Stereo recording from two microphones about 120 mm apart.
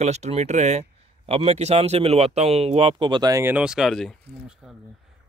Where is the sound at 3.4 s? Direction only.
15° right (ahead or behind).